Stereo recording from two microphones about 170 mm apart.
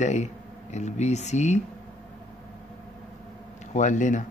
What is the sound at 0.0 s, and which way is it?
Speech, 40° left (ahead or behind).